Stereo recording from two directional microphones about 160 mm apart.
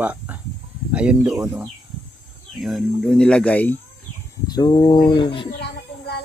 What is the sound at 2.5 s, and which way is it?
Speech, centre (ahead or behind).